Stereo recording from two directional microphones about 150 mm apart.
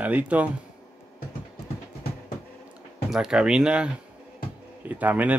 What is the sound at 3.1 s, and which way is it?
Speech, 5° right (ahead or behind).